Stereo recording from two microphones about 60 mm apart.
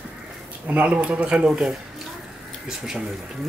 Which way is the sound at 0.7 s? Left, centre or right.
Right.